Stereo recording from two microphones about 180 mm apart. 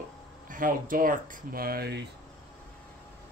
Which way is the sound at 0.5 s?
50° right (ahead or behind).